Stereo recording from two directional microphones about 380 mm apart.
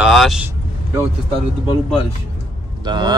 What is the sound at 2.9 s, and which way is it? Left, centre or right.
Speech, centre.